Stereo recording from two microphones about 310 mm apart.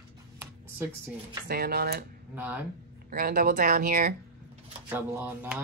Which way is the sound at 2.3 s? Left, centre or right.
Centre.